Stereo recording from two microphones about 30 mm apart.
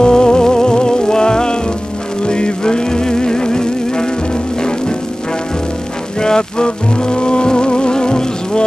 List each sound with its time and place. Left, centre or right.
0.0 s music: left
6.1 s music: left